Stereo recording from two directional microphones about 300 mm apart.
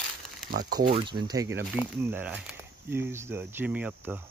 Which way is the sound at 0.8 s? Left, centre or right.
Centre.